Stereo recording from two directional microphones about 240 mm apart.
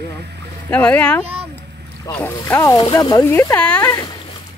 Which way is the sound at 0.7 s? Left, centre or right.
Centre.